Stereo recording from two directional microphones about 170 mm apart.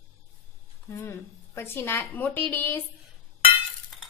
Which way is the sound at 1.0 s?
15° left (ahead or behind).